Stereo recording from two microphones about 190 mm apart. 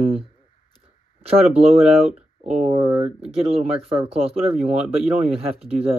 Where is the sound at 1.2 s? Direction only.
30° right (ahead or behind).